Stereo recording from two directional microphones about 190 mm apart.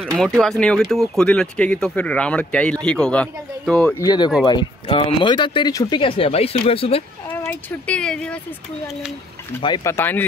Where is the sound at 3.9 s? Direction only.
20° left (ahead or behind).